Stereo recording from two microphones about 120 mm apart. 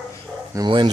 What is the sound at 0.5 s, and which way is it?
Speech, 40° right (ahead or behind).